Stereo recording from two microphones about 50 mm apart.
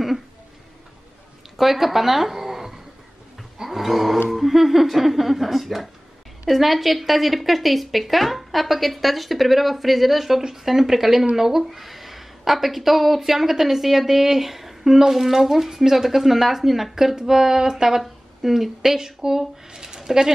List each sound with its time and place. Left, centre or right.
1.6 s speech: centre
3.5 s a sound: centre
4.3 s a woman's voice: centre